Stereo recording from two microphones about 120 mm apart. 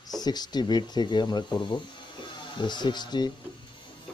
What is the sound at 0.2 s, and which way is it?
Speech, 35° left (ahead or behind).